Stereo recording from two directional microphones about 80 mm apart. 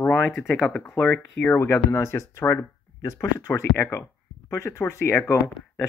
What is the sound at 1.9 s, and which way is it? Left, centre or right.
Speech, left.